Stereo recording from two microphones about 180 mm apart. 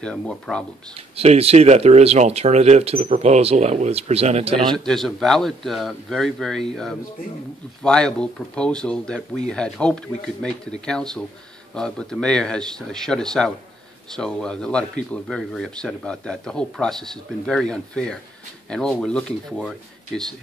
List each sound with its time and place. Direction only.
0.0 s speech: 5° left (ahead or behind)
1.1 s speech: 35° right (ahead or behind)
4.7 s speech: centre (ahead or behind)